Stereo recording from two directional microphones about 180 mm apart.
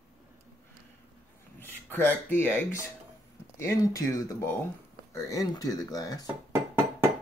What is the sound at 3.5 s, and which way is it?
Speech, 15° left (ahead or behind).